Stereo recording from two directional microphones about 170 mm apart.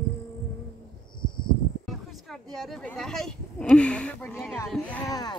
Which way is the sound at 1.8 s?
Centre (ahead or behind).